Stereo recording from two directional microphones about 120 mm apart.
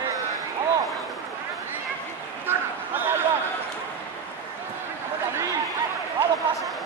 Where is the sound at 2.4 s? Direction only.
15° right (ahead or behind).